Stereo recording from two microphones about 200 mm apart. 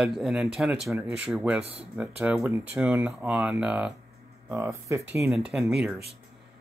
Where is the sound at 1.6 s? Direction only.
30° right (ahead or behind).